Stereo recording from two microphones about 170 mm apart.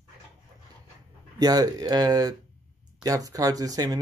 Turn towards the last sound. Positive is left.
turn(degrees=-20)  # may be behind; listen again after turning